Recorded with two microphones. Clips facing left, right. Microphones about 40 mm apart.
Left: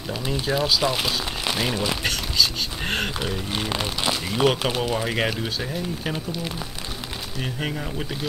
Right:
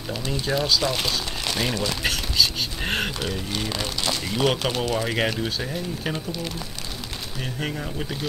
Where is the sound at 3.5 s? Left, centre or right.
Centre.